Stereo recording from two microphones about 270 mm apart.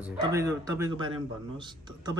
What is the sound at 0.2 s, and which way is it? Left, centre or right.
A man's voice, centre.